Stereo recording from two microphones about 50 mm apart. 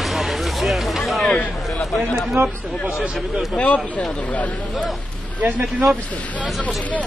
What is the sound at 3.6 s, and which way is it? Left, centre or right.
Speech, left.